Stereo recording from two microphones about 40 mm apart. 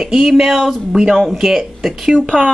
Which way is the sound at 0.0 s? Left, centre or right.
Centre.